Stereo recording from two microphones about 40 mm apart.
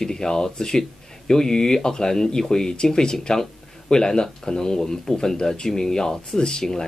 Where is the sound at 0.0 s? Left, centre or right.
Centre.